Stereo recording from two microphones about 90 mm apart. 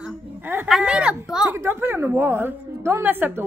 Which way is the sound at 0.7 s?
5° right (ahead or behind).